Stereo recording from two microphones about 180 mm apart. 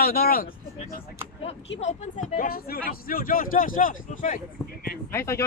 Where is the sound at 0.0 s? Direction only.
60° left (ahead or behind).